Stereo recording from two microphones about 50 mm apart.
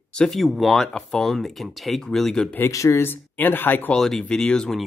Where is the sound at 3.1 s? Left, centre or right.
Left.